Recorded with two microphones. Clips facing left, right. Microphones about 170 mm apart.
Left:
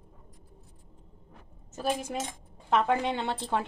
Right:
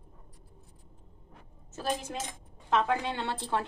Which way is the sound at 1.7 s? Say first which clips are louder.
Left 3 dB; 10° left (ahead or behind).